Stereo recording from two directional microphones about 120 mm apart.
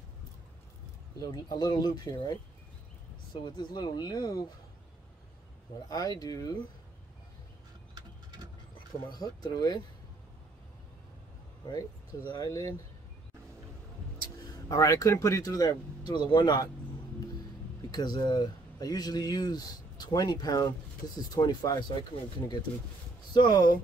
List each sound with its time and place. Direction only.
1.3 s speech: 35° left (ahead or behind)
3.4 s speech: 40° left (ahead or behind)
5.9 s speech: 30° left (ahead or behind)
7.9 s a sound: 35° right (ahead or behind)
8.7 s speech: 35° left (ahead or behind)
11.6 s speech: 35° left (ahead or behind)
14.5 s speech: 30° left (ahead or behind)
17.9 s speech: 35° left (ahead or behind)
23.3 s speech: 40° left (ahead or behind)